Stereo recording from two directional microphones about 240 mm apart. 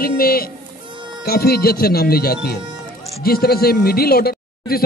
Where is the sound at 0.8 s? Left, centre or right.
Centre.